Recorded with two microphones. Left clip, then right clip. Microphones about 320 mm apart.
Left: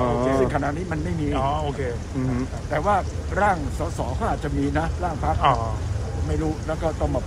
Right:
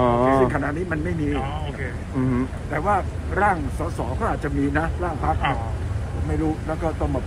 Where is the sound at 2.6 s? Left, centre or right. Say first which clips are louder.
Left 1 dB; centre.